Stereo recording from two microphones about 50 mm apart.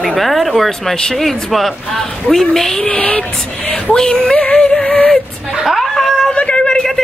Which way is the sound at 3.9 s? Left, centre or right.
Centre.